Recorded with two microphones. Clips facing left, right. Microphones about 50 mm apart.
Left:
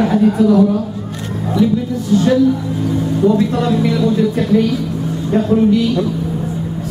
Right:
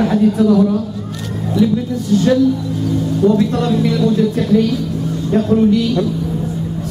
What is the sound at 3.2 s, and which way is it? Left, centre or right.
A woman's voice, centre.